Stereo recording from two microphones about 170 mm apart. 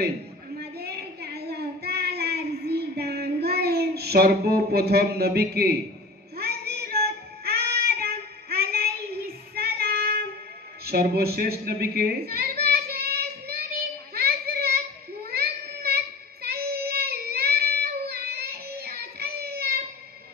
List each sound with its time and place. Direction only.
0.6 s child singing: 70° right (ahead or behind)
10.9 s a sound: 65° right (ahead or behind)
15.3 s child singing: 65° right (ahead or behind)